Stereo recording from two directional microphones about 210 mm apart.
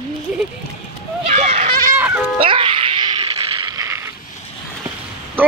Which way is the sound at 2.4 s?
25° right (ahead or behind).